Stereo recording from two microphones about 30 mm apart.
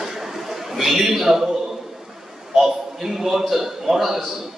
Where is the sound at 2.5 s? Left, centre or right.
Centre.